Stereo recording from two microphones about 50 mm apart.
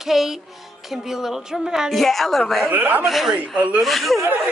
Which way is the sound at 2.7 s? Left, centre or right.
Right.